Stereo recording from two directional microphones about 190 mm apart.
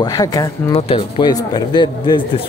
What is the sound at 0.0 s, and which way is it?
Speech, 20° left (ahead or behind).